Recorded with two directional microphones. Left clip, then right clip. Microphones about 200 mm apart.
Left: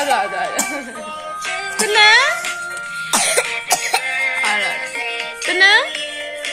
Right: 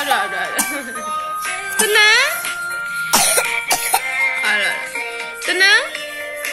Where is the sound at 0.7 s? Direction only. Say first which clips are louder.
Right 2 dB; 25° left (ahead or behind).